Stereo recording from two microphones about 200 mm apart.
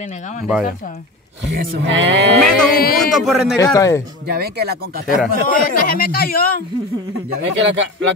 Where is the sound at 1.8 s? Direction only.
60° right (ahead or behind).